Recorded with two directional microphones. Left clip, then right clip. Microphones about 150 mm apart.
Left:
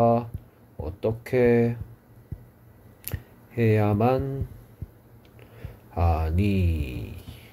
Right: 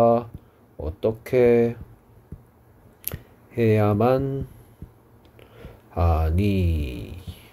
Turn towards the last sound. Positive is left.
turn(degrees=-30)  # may be behind; listen again after turning